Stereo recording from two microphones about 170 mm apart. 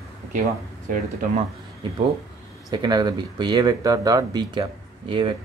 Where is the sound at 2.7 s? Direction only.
25° right (ahead or behind).